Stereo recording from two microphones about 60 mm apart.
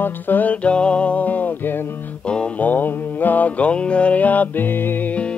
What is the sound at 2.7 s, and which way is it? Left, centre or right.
Music, left.